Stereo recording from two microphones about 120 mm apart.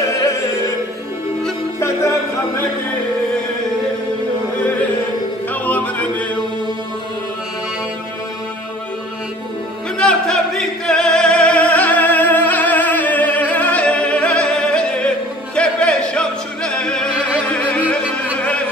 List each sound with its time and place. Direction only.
0.1 s music: 25° left (ahead or behind)
5.5 s music: 15° left (ahead or behind)
9.9 s music: 5° left (ahead or behind)